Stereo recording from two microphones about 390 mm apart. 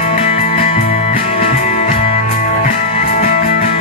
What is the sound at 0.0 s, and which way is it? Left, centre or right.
Music, centre.